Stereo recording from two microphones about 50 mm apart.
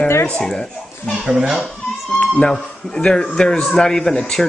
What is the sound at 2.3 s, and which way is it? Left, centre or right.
A man's voice, centre.